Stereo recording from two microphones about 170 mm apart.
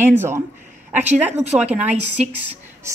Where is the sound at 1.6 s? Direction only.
10° right (ahead or behind).